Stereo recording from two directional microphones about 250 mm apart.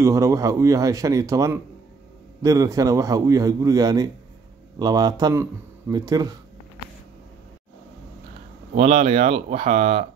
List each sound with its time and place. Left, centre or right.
0.0 s a man's voice: centre
8.7 s speech: right